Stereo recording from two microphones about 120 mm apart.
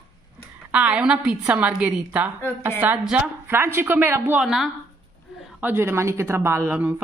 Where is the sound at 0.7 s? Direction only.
10° right (ahead or behind).